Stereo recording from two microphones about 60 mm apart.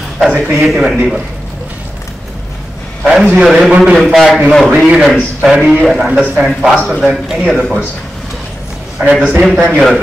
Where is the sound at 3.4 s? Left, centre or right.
Centre.